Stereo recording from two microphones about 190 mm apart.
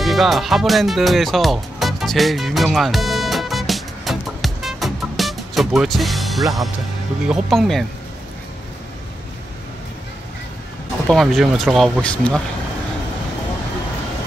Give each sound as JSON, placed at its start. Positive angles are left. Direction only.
{"t": 0.0, "sound": "music", "side_deg": 0}
{"t": 7.2, "sound": "speech", "side_deg": 0}
{"t": 11.1, "sound": "speech", "side_deg": 0}